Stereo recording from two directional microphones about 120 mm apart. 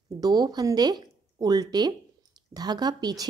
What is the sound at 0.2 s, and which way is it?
Speech, 35° right (ahead or behind).